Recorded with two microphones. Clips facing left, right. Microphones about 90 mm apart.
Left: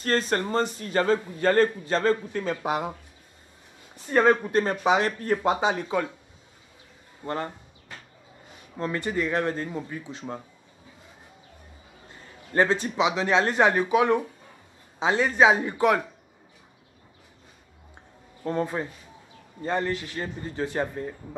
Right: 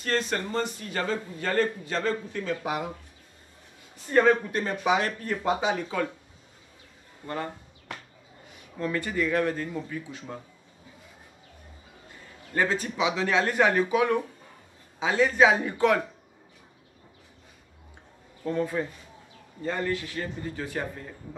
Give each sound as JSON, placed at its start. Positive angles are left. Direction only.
{"t": 0.0, "sound": "a man's voice", "side_deg": 40}
{"t": 4.1, "sound": "speech", "side_deg": 10}
{"t": 4.5, "sound": "a man's voice", "side_deg": 30}
{"t": 7.2, "sound": "a man's voice", "side_deg": 35}
{"t": 7.9, "sound": "a sound", "side_deg": -75}
{"t": 8.7, "sound": "speech", "side_deg": 25}
{"t": 12.5, "sound": "speech", "side_deg": 30}
{"t": 18.4, "sound": "a man's voice", "side_deg": 35}